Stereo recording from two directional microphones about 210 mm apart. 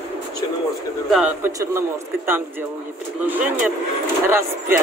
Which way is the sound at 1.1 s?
10° right (ahead or behind).